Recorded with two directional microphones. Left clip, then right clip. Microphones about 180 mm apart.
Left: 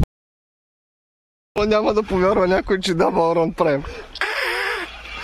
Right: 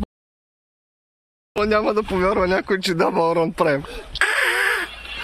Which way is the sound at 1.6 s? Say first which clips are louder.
Left 1 dB; 10° left (ahead or behind).